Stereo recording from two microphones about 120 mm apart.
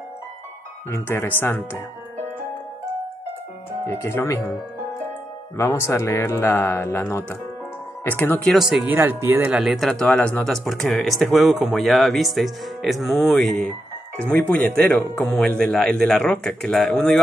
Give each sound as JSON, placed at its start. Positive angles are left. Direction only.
{"t": 0.8, "sound": "speech", "side_deg": 20}
{"t": 3.8, "sound": "speech", "side_deg": 20}
{"t": 5.6, "sound": "speech", "side_deg": 20}
{"t": 8.5, "sound": "speech", "side_deg": 0}
{"t": 8.8, "sound": "speech", "side_deg": -20}
{"t": 9.6, "sound": "speech", "side_deg": 0}
{"t": 14.8, "sound": "a man's voice", "side_deg": 10}